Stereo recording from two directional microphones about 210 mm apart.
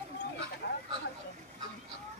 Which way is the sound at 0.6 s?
50° left (ahead or behind).